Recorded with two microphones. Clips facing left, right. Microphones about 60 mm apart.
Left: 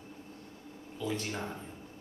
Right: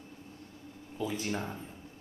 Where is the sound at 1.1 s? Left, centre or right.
Centre.